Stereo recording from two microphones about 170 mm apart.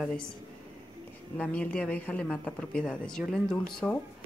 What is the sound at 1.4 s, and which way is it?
A woman's voice, 5° left (ahead or behind).